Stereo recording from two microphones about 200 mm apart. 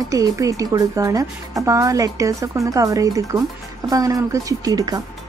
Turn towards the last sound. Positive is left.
turn(degrees=-15)  # may be behind; listen again after turning